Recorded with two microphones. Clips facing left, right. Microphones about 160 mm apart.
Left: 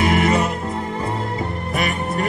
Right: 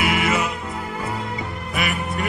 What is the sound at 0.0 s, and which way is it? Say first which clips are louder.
Music: left 4 dB; 40° left (ahead or behind).